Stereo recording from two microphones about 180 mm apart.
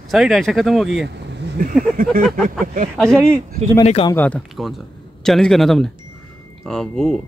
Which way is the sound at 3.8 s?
35° left (ahead or behind).